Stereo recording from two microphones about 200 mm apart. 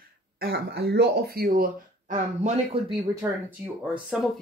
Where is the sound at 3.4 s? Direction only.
5° right (ahead or behind).